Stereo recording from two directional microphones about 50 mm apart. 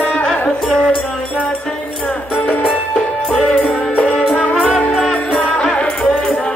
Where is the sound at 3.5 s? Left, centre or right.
Left.